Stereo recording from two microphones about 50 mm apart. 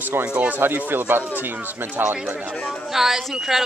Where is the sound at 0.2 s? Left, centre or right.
Right.